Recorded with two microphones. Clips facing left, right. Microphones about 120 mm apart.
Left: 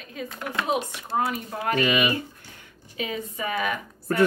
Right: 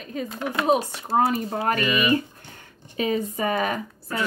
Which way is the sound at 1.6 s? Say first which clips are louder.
Left 2 dB; 45° right (ahead or behind).